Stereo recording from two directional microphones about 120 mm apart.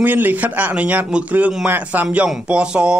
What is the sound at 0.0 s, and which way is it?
Speech, 15° right (ahead or behind).